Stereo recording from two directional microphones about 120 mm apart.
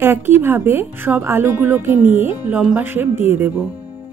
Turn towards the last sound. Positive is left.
turn(degrees=-15)  # may be behind; listen again after turning